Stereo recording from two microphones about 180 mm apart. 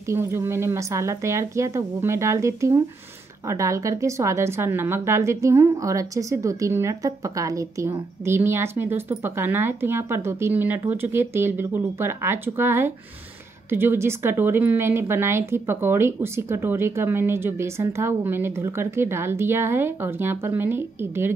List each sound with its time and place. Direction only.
0.1 s speech: 15° right (ahead or behind)